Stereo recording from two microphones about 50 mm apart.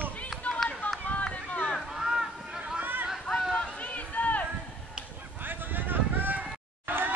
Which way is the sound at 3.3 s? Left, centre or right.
Centre.